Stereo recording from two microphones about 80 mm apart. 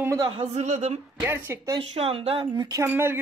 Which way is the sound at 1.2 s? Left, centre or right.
Right.